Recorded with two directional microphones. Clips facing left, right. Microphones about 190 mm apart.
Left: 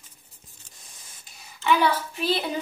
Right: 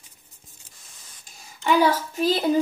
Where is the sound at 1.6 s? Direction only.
40° right (ahead or behind).